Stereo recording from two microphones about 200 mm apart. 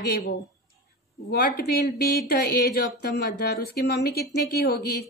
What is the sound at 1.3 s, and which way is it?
Speech, 50° left (ahead or behind).